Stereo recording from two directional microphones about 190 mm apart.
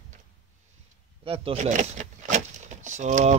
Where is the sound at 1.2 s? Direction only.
30° right (ahead or behind).